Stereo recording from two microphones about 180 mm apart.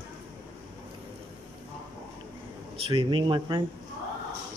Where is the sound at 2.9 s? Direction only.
25° right (ahead or behind).